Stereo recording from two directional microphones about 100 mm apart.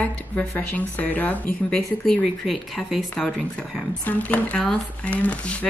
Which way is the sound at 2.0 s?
5° left (ahead or behind).